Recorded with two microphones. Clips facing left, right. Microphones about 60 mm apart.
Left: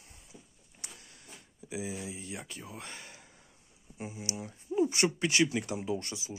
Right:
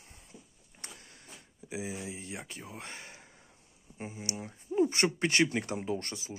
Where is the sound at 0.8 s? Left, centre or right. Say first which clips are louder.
Right 2 dB; right.